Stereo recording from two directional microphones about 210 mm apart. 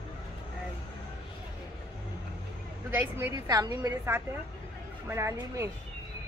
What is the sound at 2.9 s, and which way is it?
Speech, 10° right (ahead or behind).